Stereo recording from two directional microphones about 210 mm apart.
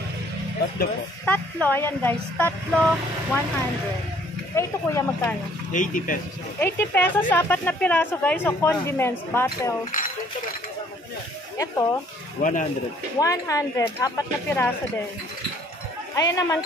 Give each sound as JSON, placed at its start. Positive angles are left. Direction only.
{"t": 1.2, "sound": "speech", "side_deg": 5}
{"t": 4.6, "sound": "speech", "side_deg": 15}
{"t": 5.7, "sound": "speech", "side_deg": 40}
{"t": 6.6, "sound": "speech", "side_deg": 10}
{"t": 11.5, "sound": "speech", "side_deg": 15}
{"t": 12.4, "sound": "speech", "side_deg": 40}
{"t": 13.2, "sound": "speech", "side_deg": 15}
{"t": 16.2, "sound": "speech", "side_deg": 15}